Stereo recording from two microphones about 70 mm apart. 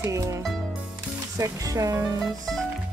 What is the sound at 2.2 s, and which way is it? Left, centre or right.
Music, centre.